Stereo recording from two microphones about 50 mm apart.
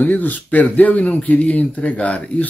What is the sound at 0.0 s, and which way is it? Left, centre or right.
Speech, left.